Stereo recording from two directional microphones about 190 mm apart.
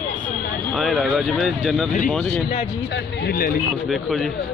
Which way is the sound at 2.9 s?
60° left (ahead or behind).